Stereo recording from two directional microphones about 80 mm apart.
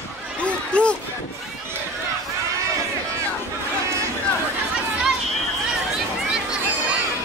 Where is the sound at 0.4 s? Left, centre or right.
Centre.